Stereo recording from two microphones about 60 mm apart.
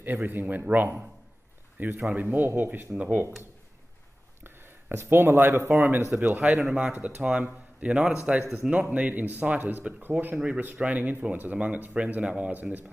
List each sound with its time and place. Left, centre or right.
0.0 s speech: right
4.9 s speech: right
6.6 s speech: centre